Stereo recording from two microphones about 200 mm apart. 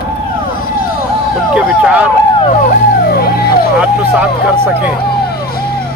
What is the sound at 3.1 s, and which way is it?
Vehicle, 50° left (ahead or behind).